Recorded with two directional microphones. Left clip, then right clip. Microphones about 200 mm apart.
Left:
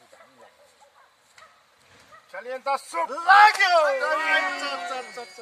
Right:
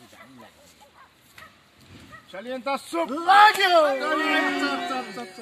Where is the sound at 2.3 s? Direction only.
10° left (ahead or behind).